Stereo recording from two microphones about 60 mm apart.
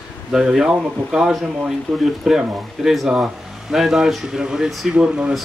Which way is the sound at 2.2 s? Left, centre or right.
Centre.